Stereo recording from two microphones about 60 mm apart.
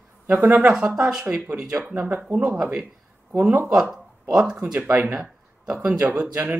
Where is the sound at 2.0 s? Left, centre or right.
Right.